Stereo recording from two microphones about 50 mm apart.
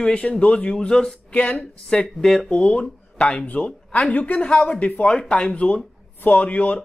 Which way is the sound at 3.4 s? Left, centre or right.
Left.